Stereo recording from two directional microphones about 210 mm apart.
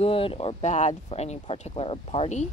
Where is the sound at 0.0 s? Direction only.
25° left (ahead or behind).